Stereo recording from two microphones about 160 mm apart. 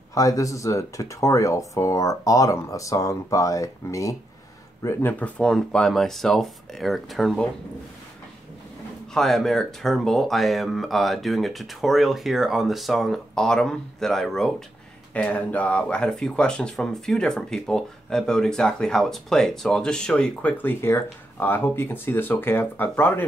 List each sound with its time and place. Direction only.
0.1 s speech: 20° left (ahead or behind)
4.8 s speech: 10° left (ahead or behind)
9.1 s speech: centre (ahead or behind)